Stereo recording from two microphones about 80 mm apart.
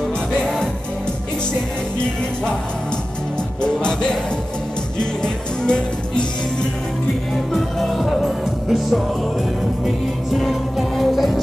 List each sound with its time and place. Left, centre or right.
0.4 s music: centre
3.6 s music: centre
7.5 s music: centre